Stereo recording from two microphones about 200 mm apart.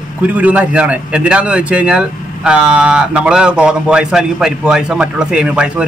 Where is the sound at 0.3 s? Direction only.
5° right (ahead or behind).